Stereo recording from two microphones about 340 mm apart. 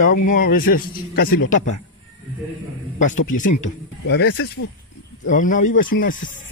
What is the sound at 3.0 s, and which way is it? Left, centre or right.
Speech, left.